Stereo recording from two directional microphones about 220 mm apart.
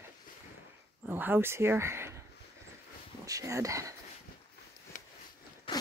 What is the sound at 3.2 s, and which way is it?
Speech, 15° right (ahead or behind).